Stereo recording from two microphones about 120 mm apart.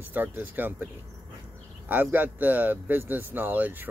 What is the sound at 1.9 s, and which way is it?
Speech, 15° right (ahead or behind).